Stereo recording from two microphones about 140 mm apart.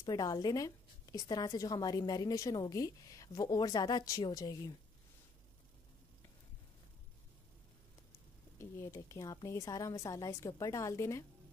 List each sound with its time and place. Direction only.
0.0 s a woman's voice: 30° left (ahead or behind)
8.5 s a woman's voice: 20° left (ahead or behind)